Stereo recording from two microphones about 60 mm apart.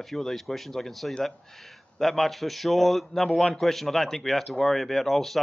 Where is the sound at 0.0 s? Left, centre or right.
Centre.